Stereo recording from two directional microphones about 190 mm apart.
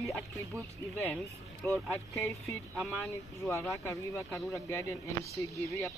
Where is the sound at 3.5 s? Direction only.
15° left (ahead or behind).